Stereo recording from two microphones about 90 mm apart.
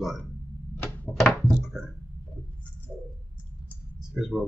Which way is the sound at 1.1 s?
5° left (ahead or behind).